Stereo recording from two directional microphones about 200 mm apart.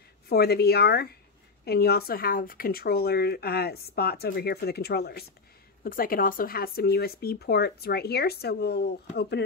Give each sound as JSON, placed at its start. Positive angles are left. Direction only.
{"t": 0.3, "sound": "speech", "side_deg": 50}